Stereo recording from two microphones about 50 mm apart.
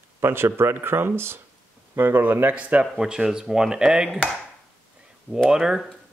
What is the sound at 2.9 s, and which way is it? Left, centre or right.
Speech, centre.